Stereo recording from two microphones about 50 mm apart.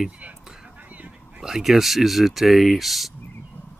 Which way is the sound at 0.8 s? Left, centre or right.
Right.